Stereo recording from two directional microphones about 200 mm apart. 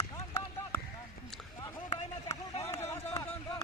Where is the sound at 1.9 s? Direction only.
35° left (ahead or behind).